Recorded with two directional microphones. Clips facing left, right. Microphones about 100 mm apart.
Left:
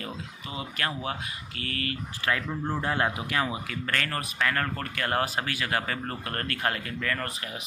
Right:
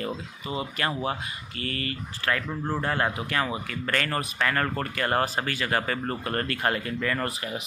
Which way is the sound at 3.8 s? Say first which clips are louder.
Right 4 dB; 5° right (ahead or behind).